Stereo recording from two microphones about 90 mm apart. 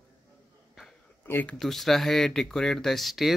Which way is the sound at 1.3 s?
20° left (ahead or behind).